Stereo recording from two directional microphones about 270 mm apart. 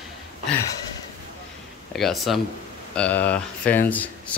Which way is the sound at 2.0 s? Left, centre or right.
Centre.